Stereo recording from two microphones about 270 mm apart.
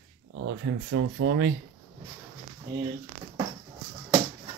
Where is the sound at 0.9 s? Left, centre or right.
Right.